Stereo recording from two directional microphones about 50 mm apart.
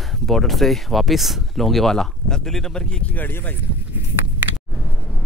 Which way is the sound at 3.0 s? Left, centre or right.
Left.